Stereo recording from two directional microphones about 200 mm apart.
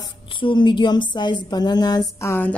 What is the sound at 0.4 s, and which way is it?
A woman's voice, 25° left (ahead or behind).